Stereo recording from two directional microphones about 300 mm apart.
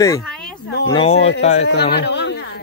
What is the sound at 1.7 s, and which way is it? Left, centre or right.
Speech, left.